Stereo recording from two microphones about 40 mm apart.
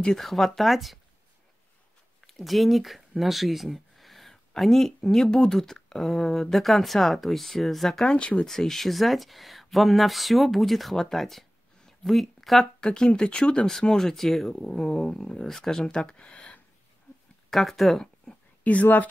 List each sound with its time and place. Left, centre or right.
0.2 s speech: centre
2.2 s speech: centre
8.0 s speech: left
8.5 s speech: centre
12.8 s speech: centre
13.7 s speech: centre; by 16.5 s left
17.5 s speech: centre
18.0 s a sound: centre
18.6 s speech: left